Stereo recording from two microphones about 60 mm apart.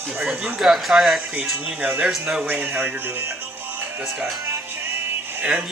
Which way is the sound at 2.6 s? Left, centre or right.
Right.